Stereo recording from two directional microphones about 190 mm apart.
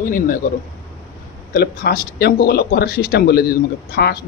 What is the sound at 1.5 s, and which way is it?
Speech, 50° left (ahead or behind).